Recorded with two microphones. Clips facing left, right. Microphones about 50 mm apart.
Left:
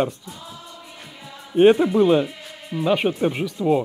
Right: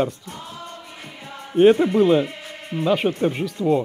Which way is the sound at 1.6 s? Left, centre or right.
Centre.